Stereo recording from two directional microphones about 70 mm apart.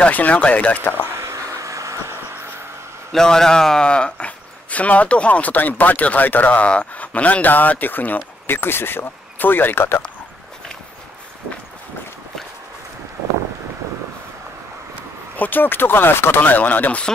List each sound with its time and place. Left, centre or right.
0.0 s speech: left
1.1 s a sound: right
3.1 s speech: centre; by 10.0 s left
15.3 s speech: left